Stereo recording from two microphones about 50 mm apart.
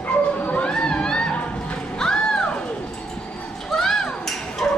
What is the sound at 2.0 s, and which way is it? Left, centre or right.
Music, centre.